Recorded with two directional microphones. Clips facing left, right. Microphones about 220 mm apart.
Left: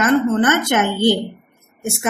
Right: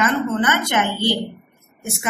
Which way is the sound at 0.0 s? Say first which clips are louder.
Left 5 dB; 50° left (ahead or behind).